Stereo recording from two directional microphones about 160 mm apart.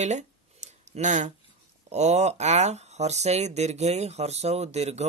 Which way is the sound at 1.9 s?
45° right (ahead or behind).